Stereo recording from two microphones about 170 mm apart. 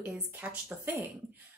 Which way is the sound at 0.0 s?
10° right (ahead or behind).